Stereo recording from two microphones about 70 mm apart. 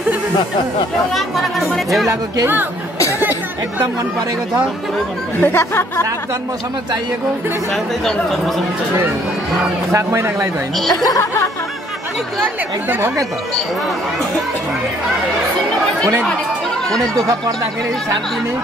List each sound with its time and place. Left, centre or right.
1.1 s speech: centre
5.4 s speech: left
9.8 s a man's voice: right
16.9 s speech: centre